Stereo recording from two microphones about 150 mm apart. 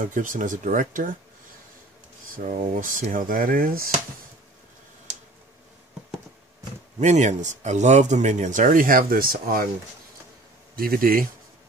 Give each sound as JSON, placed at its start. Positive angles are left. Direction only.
{"t": 0.0, "sound": "speech", "side_deg": -60}
{"t": 2.3, "sound": "speech", "side_deg": -70}
{"t": 7.0, "sound": "speech", "side_deg": -50}
{"t": 10.8, "sound": "speech", "side_deg": -75}